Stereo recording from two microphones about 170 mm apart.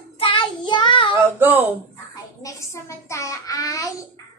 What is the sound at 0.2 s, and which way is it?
Child singing, 30° left (ahead or behind).